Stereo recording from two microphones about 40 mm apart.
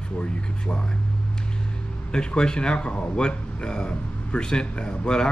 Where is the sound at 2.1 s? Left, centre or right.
Left.